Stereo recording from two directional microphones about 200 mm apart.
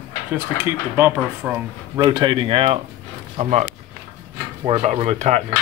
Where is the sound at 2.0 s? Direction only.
20° right (ahead or behind).